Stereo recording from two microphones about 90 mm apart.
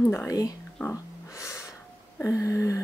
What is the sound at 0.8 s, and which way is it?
Snort, 35° left (ahead or behind).